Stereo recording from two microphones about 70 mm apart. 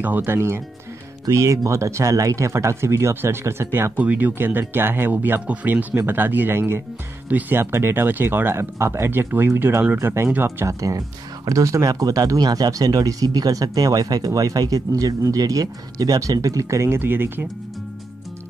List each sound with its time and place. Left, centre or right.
0.0 s speech: right
1.2 s speech: right
3.9 s speech: right